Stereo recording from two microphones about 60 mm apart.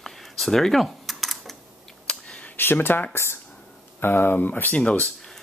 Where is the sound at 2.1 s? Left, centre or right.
Centre.